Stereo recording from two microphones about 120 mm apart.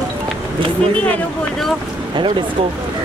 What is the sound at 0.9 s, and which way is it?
Speech, 10° left (ahead or behind).